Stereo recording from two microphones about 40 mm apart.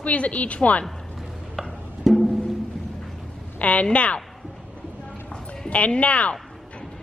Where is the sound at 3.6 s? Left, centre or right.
Left.